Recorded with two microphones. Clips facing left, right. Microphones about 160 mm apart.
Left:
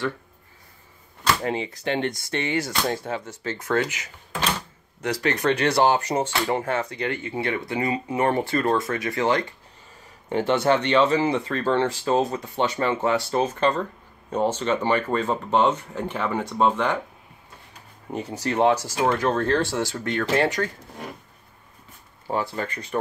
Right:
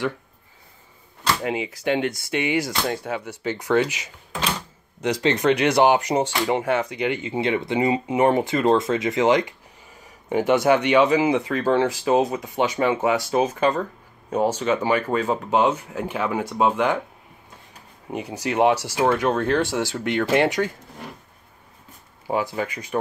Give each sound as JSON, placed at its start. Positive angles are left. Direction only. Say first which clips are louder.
{"t": 1.4, "sound": "speech", "louder": "right 1 dB", "side_deg": -10}
{"t": 2.9, "sound": "speech", "louder": "right 1 dB", "side_deg": 0}
{"t": 3.2, "sound": "speech", "louder": "right 4 dB", "side_deg": -15}
{"t": 18.1, "sound": "speech", "louder": "right 1 dB", "side_deg": -15}
{"t": 22.3, "sound": "speech", "louder": "right 2 dB", "side_deg": -10}